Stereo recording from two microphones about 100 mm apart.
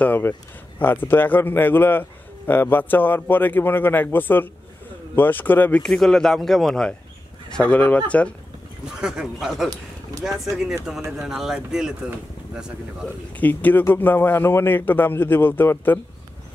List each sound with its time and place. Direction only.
0.0 s a man's voice: 15° left (ahead or behind)
5.8 s speech: 5° left (ahead or behind)
9.0 s speech: 5° right (ahead or behind)
13.4 s a man's voice: 15° left (ahead or behind)